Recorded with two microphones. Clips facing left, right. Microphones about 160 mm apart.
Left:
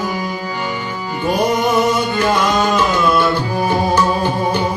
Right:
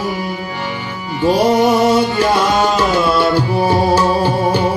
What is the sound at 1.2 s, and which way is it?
Music, 30° right (ahead or behind).